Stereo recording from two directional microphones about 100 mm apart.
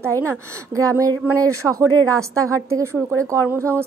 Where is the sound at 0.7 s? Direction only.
35° right (ahead or behind).